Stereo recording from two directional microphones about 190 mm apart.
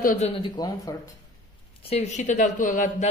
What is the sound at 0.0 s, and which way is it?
Speech, 45° left (ahead or behind).